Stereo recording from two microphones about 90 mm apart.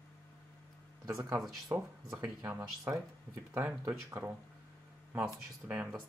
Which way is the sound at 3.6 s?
20° right (ahead or behind).